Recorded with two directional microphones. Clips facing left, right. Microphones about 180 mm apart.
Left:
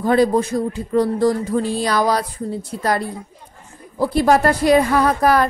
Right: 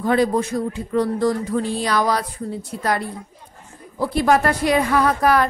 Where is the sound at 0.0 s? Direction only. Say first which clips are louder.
Left 3 dB; 35° left (ahead or behind).